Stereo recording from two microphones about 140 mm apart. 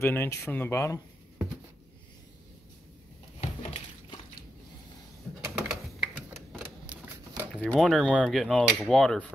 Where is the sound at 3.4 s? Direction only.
50° left (ahead or behind).